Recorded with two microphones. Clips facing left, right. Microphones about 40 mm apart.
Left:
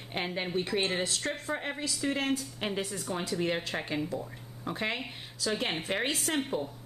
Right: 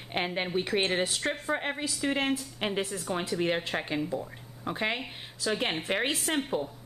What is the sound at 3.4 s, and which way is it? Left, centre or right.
A woman's voice, centre.